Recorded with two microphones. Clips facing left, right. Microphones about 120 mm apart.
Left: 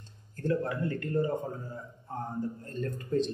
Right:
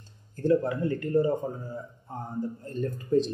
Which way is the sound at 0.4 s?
20° right (ahead or behind).